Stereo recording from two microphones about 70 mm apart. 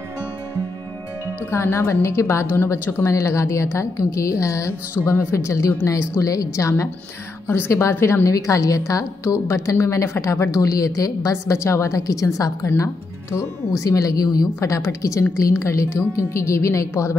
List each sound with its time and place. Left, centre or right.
1.5 s a woman's voice: left
7.4 s a woman's voice: left
14.6 s a woman's voice: left